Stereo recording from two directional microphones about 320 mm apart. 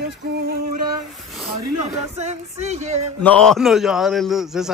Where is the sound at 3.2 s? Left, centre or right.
Centre.